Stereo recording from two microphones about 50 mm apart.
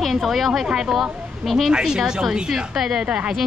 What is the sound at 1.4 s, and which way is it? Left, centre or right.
Speech, centre.